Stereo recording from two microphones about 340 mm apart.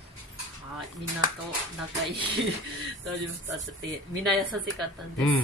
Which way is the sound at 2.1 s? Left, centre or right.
Centre.